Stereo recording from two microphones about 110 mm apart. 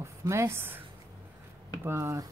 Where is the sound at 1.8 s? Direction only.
25° right (ahead or behind).